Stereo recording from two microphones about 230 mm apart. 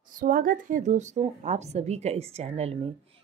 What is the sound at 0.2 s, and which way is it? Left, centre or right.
Speech, right.